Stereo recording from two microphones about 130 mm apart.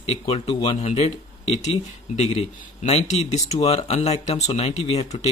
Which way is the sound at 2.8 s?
55° left (ahead or behind).